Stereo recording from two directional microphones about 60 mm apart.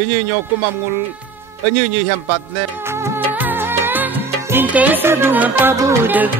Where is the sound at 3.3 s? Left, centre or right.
Right.